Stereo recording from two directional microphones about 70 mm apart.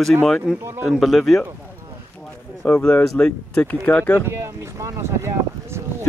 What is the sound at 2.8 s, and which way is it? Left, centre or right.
Speech, centre.